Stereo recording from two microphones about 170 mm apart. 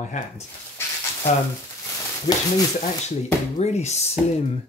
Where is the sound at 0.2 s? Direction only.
45° left (ahead or behind).